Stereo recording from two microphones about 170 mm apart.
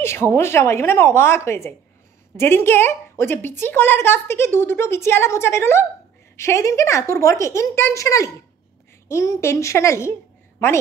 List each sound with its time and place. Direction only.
0.0 s a woman's voice: 15° left (ahead or behind)